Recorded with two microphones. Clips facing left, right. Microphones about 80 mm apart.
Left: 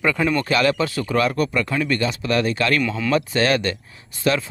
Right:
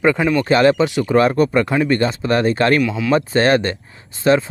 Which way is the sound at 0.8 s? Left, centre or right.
Centre.